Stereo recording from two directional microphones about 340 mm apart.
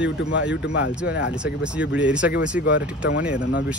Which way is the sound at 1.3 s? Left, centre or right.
Centre.